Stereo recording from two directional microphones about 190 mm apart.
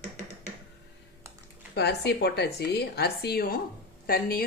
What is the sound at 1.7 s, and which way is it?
Speech, 60° left (ahead or behind).